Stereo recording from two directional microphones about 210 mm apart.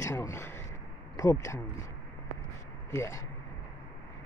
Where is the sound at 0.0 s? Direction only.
15° left (ahead or behind).